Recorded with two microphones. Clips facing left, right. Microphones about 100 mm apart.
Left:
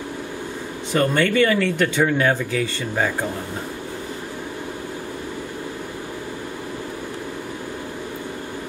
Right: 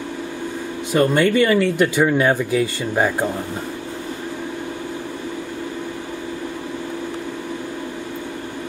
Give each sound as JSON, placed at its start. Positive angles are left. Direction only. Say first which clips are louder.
{"t": 0.9, "sound": "speech", "louder": "right 3 dB", "side_deg": -10}